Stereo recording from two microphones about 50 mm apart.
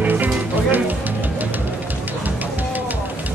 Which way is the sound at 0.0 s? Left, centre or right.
Right.